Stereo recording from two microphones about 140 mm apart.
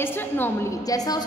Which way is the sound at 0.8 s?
25° left (ahead or behind).